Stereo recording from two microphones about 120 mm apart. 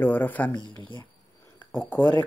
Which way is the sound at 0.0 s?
15° left (ahead or behind).